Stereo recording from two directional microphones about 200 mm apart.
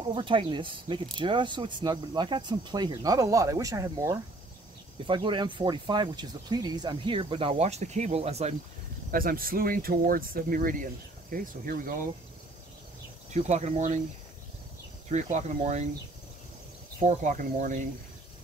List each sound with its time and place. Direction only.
0.0 s speech: 25° right (ahead or behind)
9.1 s speech: 45° right (ahead or behind)
13.3 s speech: 35° right (ahead or behind)
15.0 s speech: 35° right (ahead or behind)
17.0 s speech: 40° right (ahead or behind)